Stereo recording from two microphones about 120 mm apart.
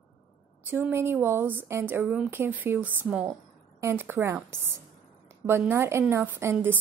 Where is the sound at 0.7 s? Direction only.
15° right (ahead or behind).